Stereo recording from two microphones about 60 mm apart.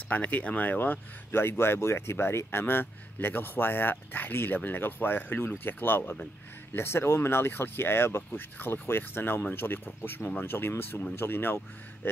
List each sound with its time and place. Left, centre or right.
0.1 s speech: left